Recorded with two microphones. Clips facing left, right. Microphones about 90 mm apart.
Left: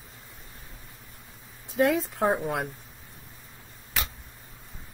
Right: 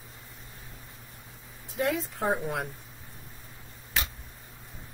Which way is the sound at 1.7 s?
85° left.